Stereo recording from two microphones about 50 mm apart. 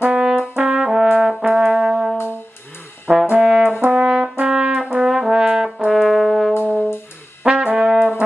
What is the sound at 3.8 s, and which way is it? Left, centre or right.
Brass instrument, right.